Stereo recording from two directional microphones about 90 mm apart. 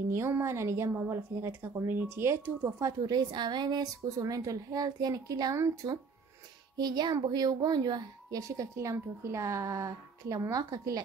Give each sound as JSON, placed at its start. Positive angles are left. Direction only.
{"t": 0.1, "sound": "a woman's voice", "side_deg": -30}
{"t": 2.8, "sound": "a woman's voice", "side_deg": -45}
{"t": 6.8, "sound": "a woman's voice", "side_deg": -50}